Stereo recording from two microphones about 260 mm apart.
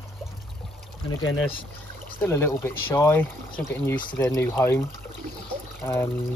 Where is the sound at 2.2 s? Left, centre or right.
Centre.